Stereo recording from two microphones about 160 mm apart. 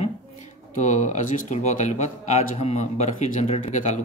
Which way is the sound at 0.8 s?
50° left (ahead or behind).